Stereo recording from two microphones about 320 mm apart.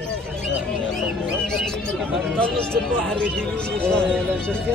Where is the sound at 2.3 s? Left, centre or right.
Centre.